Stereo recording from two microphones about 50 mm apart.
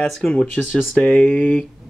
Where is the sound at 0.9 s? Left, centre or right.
Centre.